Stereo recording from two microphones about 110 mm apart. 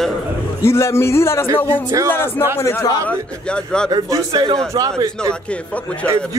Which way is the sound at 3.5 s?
5° left (ahead or behind).